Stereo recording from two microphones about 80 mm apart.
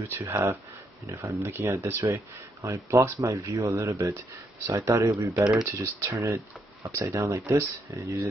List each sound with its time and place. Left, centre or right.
0.1 s speech: right